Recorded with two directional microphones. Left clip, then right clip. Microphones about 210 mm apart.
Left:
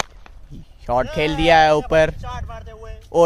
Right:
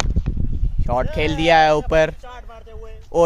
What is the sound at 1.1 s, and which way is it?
Speech, centre (ahead or behind).